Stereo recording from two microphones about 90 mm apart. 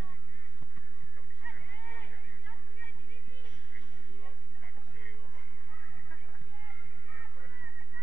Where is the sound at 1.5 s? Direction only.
20° left (ahead or behind).